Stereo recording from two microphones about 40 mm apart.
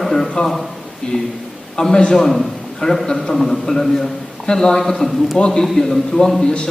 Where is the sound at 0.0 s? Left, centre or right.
Centre.